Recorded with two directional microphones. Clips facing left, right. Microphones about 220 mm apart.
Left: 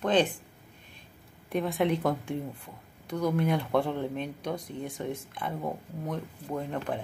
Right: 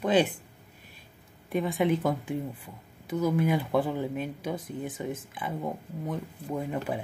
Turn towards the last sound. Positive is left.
turn(degrees=-5)  # may be behind; listen again after turning